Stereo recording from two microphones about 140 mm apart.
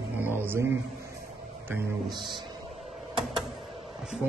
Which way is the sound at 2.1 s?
35° right (ahead or behind).